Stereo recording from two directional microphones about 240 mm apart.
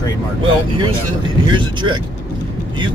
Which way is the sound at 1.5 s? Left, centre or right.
Centre.